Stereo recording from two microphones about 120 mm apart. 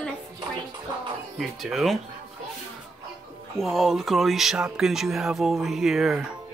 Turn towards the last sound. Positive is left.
turn(degrees=0)  # may be behind; listen again after turning